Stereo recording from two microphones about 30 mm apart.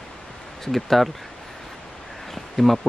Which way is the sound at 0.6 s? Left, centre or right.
Centre.